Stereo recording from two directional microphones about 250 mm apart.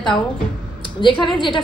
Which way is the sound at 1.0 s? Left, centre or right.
Centre.